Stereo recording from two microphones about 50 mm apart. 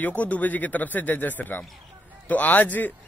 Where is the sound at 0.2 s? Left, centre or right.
Left.